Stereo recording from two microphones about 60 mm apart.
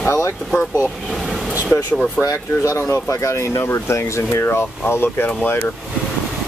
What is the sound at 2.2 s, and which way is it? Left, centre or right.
Speech, left.